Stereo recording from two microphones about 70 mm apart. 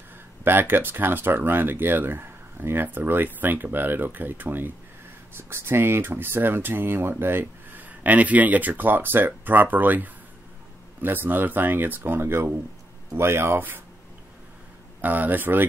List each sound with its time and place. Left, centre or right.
0.4 s speech: right
15.0 s speech: right